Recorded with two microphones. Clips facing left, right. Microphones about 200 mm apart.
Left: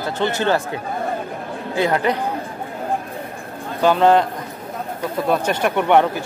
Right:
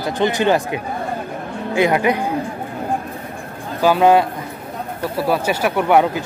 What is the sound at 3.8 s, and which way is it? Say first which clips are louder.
Speech: right 1 dB; 5° right (ahead or behind).